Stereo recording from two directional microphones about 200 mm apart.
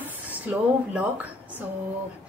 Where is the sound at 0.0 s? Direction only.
10° right (ahead or behind).